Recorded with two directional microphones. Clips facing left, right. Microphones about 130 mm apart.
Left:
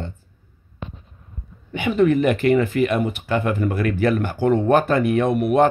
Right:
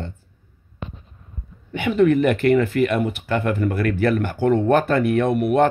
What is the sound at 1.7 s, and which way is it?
Speech, 15° left (ahead or behind).